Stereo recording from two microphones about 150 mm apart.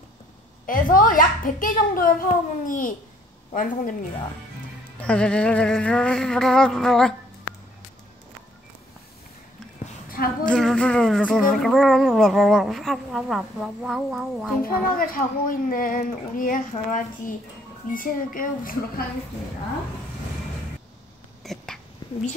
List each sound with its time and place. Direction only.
0.7 s a child's voice: 65° left (ahead or behind)
5.0 s speech: 5° left (ahead or behind)
10.0 s a sound: 80° left
10.4 s speech: 5° left (ahead or behind)
14.6 s a child's voice: 70° left (ahead or behind)
21.4 s a sound: centre (ahead or behind)